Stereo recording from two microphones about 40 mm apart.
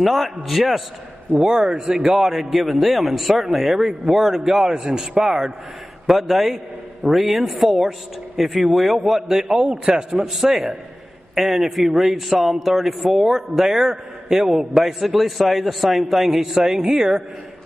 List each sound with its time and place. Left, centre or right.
0.0 s a man's voice: centre
1.3 s a man's voice: centre
6.0 s a man's voice: centre
10.2 s a man's voice: centre